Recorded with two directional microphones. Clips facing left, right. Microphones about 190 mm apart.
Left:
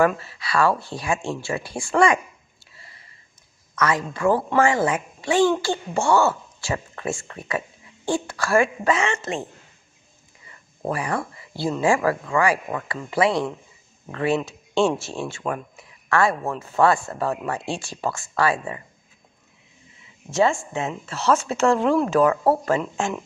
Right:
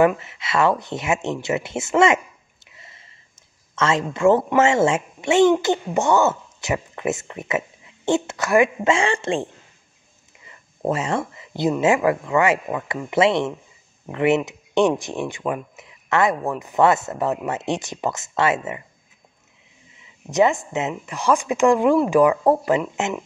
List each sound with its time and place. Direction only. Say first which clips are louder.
0.0 s speech: right 3 dB; 20° right (ahead or behind)
2.6 s a sound: right 2 dB; 20° right (ahead or behind)
3.7 s speech: right 2 dB; 25° right (ahead or behind)
20.2 s speech: right 2 dB; 20° right (ahead or behind)